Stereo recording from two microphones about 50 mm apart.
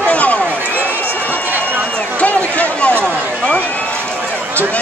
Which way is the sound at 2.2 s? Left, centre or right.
Left.